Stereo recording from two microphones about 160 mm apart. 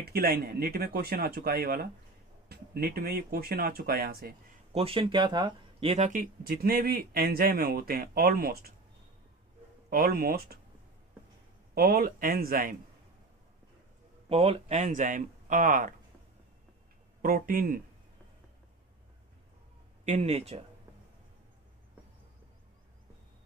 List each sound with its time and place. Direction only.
0.1 s speech: 75° right (ahead or behind)
4.7 s speech: 35° right (ahead or behind); by 8.7 s 70° right (ahead or behind)
9.8 s speech: 70° right (ahead or behind)
11.7 s speech: 65° right (ahead or behind)
14.3 s speech: 35° right (ahead or behind); by 15.9 s 55° right (ahead or behind)
17.2 s speech: 65° right (ahead or behind)
20.2 s speech: 40° right (ahead or behind)